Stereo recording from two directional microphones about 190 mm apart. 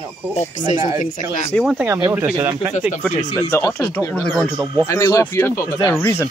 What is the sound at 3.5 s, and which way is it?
Speech, 10° left (ahead or behind).